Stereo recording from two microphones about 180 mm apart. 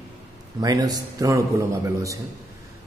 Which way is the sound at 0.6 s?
20° right (ahead or behind).